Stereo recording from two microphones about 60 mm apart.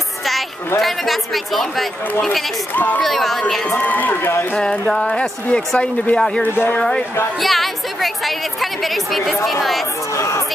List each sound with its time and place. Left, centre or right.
0.2 s a sound: centre
0.7 s a woman's voice: centre
2.7 s speech: left
3.0 s a woman's voice: centre
3.7 s speech: left
4.8 s speech: centre
6.4 s speech: left
7.3 s a woman's voice: centre
10.1 s speech: left